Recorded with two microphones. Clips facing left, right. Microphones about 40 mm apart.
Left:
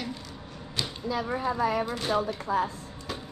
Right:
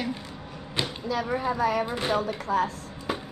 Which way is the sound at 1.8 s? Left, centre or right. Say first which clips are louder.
Right 1 dB; right.